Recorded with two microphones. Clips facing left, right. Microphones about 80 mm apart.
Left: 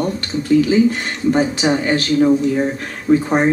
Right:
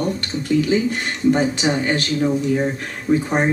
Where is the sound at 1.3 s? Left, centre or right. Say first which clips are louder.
Left 2 dB; left.